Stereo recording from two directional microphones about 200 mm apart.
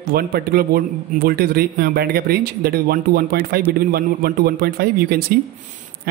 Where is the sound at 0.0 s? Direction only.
50° right (ahead or behind).